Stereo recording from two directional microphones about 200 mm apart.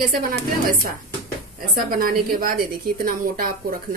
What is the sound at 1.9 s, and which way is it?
A woman's voice, 45° right (ahead or behind).